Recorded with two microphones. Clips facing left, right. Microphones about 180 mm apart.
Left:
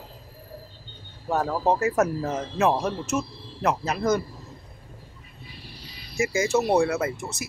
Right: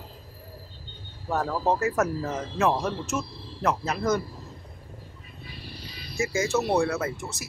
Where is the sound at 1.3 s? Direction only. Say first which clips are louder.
Left 2 dB; 20° left (ahead or behind).